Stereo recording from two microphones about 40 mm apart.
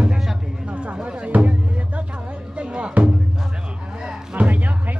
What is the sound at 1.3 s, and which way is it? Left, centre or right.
Music, right.